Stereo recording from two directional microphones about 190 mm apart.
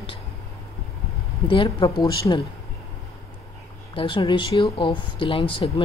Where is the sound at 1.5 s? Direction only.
25° left (ahead or behind).